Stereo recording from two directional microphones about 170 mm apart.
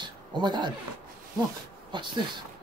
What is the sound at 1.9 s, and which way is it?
Speech, 25° right (ahead or behind).